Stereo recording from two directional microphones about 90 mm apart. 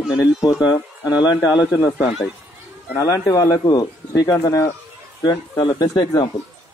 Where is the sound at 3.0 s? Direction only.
40° left (ahead or behind).